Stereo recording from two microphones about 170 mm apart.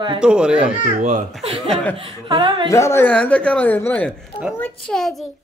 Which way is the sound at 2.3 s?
30° right (ahead or behind).